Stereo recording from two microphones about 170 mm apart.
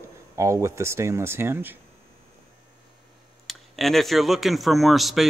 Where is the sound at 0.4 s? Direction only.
15° right (ahead or behind).